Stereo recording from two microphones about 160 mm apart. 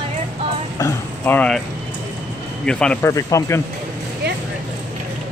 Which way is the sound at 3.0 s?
20° left (ahead or behind).